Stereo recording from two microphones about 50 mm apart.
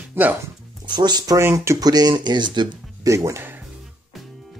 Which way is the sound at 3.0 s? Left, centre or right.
Right.